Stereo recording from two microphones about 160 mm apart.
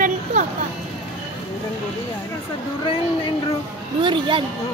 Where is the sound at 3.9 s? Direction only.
30° right (ahead or behind).